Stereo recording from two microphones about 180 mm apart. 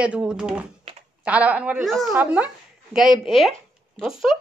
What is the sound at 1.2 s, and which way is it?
A woman's voice, 5° right (ahead or behind).